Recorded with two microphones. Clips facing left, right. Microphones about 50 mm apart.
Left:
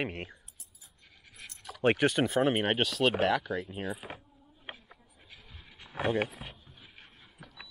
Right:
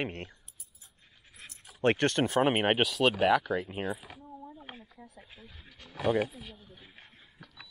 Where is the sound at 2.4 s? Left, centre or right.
Centre.